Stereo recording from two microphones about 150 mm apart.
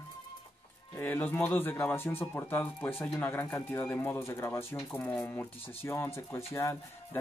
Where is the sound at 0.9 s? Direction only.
10° left (ahead or behind).